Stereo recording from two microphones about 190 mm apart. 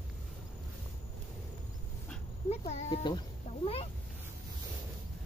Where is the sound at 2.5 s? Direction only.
35° left (ahead or behind).